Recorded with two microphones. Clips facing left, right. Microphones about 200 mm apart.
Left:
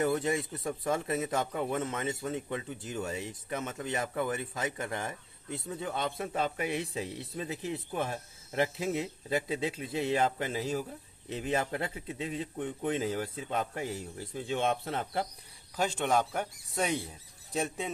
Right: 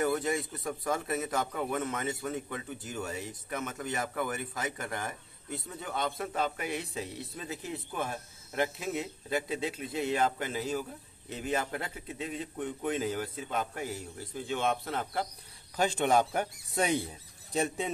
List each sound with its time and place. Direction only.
0.0 s a man's voice: 25° left (ahead or behind)
15.7 s speech: centre (ahead or behind)